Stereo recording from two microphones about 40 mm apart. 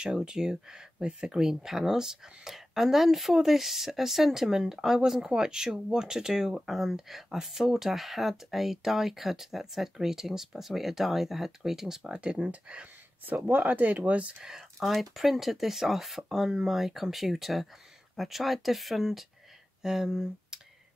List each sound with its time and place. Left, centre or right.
0.0 s speech: centre
12.1 s speech: right
13.2 s speech: right
14.8 s speech: centre